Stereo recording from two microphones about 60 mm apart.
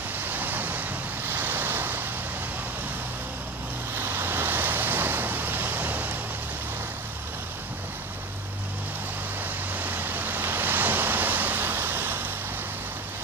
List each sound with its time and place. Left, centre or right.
0.3 s waves: right
3.9 s vehicle: right
9.8 s vehicle: right